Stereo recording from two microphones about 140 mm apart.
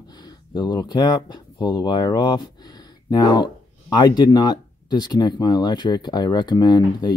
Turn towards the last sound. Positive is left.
turn(degrees=30)  # may be behind; listen again after turning